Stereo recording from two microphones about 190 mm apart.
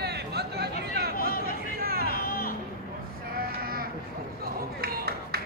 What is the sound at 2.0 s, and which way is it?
Music, 50° left (ahead or behind).